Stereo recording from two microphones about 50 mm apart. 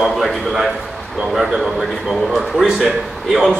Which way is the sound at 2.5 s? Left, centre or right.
Centre.